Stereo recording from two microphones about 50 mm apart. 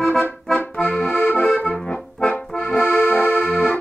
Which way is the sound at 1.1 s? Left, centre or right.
Left.